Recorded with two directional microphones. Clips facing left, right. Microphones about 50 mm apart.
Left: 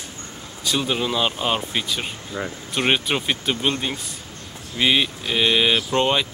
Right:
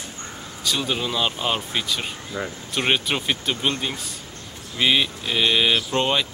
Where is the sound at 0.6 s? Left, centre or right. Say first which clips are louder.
Left 2 dB; centre.